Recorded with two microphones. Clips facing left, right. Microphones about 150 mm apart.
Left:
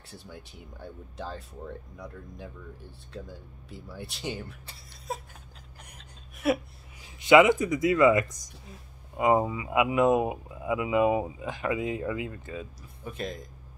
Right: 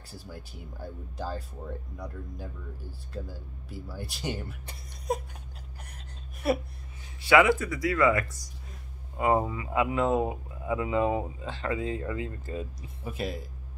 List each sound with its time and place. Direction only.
0.1 s speech: 5° right (ahead or behind)
6.4 s speech: centre (ahead or behind)
7.2 s speech: 20° left (ahead or behind)
12.4 s speech: centre (ahead or behind)